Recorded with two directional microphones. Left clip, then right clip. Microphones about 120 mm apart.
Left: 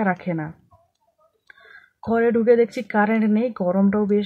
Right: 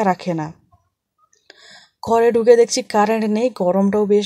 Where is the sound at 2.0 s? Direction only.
30° right (ahead or behind).